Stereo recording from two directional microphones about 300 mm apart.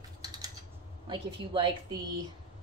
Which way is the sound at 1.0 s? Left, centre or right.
Centre.